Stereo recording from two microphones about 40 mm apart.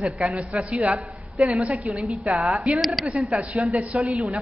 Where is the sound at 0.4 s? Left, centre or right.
Right.